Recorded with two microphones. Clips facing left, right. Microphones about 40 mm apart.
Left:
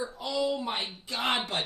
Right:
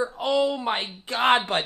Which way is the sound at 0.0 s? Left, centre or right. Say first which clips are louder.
Right 7 dB; right.